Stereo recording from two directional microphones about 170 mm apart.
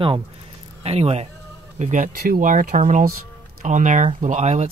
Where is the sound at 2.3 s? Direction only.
50° right (ahead or behind).